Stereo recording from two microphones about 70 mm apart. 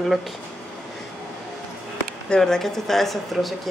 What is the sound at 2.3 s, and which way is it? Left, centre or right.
Speech, centre.